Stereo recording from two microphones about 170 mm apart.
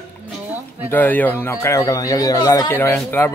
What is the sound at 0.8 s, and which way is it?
A man's voice, 10° left (ahead or behind).